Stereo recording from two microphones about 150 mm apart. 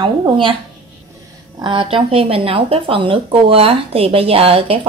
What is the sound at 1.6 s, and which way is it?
Speech, 35° right (ahead or behind).